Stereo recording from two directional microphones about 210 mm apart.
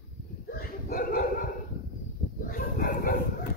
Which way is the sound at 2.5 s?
45° left (ahead or behind).